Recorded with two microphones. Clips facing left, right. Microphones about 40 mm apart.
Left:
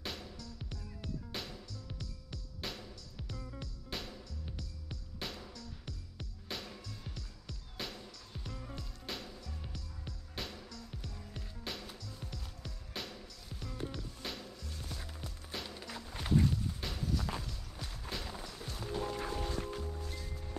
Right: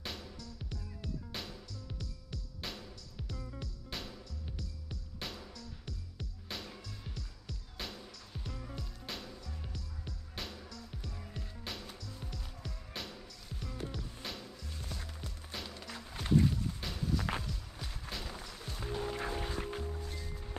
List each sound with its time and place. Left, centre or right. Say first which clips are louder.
0.0 s music: even; centre
11.1 s music: right 2 dB; centre
11.6 s music: left 2 dB; centre
20.0 s music: even; centre